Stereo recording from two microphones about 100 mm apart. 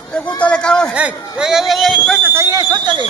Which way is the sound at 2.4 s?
45° right (ahead or behind).